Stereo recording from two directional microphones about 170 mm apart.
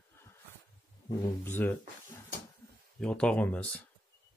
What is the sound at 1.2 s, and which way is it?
Speech, 15° left (ahead or behind).